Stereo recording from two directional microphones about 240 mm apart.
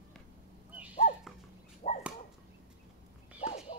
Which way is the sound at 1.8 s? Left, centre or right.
Left.